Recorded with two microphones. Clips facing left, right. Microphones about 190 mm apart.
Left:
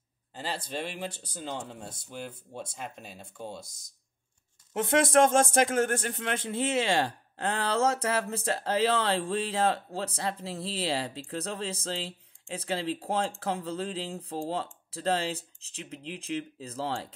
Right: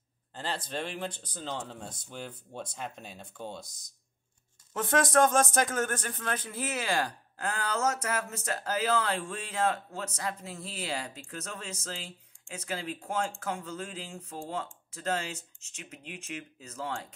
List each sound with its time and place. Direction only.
0.3 s speech: 10° left (ahead or behind)
3.6 s speech: 25° left (ahead or behind)